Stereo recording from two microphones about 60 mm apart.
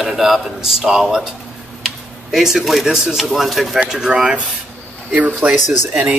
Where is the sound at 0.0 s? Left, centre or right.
Centre.